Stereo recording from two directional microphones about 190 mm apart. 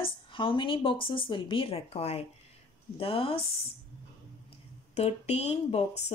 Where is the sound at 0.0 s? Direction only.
25° left (ahead or behind).